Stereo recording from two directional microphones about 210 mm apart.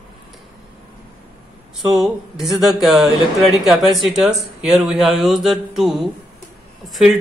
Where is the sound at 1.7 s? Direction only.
Centre (ahead or behind).